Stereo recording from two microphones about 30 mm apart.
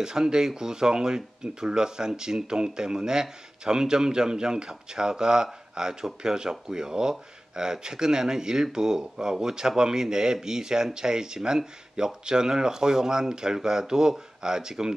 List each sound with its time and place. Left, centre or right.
0.0 s speech: right